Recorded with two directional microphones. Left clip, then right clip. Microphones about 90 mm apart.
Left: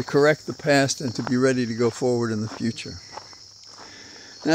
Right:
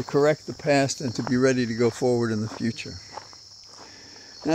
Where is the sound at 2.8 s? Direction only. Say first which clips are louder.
Left 1 dB; 25° left (ahead or behind).